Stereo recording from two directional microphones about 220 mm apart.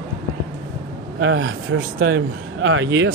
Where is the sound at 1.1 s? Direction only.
60° right (ahead or behind).